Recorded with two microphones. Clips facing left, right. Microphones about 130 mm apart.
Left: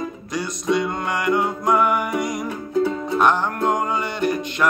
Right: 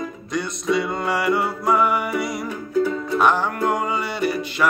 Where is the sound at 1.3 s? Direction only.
5° right (ahead or behind).